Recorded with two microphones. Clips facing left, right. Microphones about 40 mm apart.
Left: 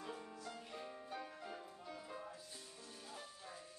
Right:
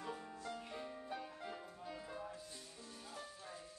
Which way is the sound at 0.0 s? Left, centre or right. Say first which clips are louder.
Right 2 dB; centre.